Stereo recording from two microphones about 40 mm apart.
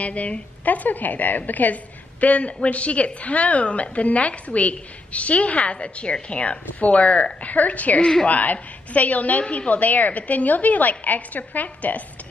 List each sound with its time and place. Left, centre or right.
0.0 s a woman's voice: left